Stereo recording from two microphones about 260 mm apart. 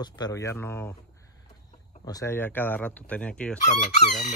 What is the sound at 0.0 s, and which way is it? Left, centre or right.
Speech, centre.